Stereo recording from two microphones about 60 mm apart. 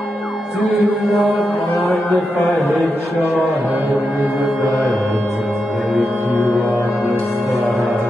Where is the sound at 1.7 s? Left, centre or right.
Left.